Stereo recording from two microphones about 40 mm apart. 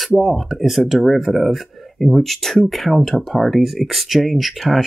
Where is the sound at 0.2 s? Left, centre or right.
Centre.